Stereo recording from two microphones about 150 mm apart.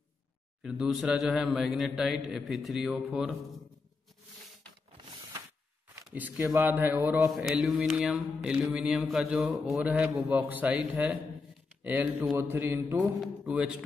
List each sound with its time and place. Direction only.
0.6 s mantra: 5° right (ahead or behind)
6.0 s speech: 10° right (ahead or behind)
7.3 s mantra: centre (ahead or behind)
11.8 s speech: 10° right (ahead or behind)
13.2 s mantra: 5° right (ahead or behind)